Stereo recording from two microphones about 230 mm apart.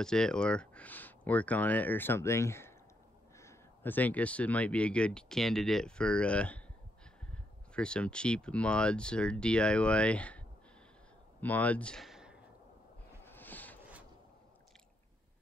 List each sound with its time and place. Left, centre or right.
0.0 s speech: centre
7.7 s speech: centre
11.4 s speech: centre
13.2 s a sound: centre